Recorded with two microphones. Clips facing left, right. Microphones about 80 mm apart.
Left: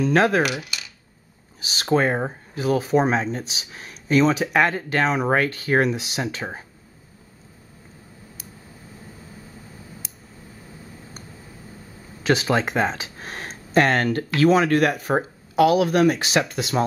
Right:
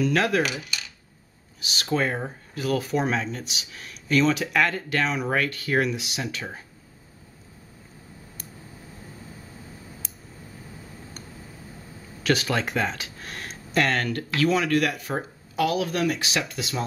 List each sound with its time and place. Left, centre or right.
0.0 s speech: left
0.4 s speech: centre
1.7 s speech: left
12.2 s speech: left